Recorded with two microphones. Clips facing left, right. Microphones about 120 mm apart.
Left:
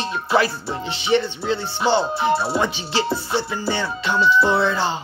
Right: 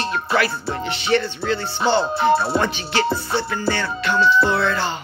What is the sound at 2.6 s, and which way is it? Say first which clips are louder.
Speech: right 1 dB; 20° left (ahead or behind).